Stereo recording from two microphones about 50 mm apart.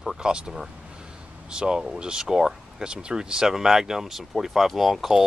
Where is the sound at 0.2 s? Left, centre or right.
Centre.